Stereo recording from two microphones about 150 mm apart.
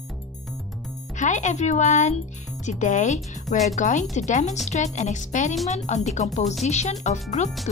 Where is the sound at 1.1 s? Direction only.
55° left (ahead or behind).